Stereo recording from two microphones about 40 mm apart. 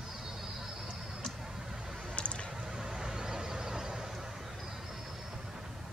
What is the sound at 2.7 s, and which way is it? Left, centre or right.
Vehicle, centre.